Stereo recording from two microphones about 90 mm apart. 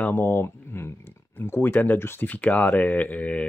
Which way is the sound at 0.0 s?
25° left (ahead or behind).